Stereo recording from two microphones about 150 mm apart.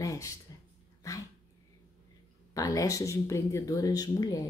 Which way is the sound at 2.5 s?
20° left (ahead or behind).